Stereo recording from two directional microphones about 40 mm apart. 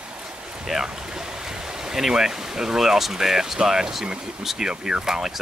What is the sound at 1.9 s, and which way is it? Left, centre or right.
Speech, centre.